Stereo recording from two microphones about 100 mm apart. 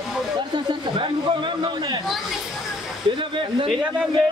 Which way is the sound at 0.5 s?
55° right (ahead or behind).